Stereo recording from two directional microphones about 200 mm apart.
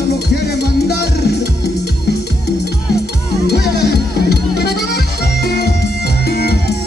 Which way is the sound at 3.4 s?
55° left (ahead or behind).